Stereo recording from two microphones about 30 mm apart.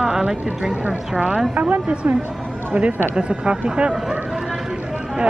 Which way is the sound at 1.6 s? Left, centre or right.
Right.